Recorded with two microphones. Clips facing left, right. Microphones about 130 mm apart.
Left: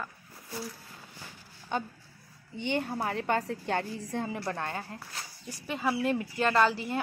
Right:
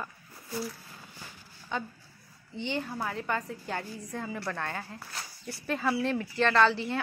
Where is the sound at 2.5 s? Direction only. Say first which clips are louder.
Left 2 dB; 55° left (ahead or behind).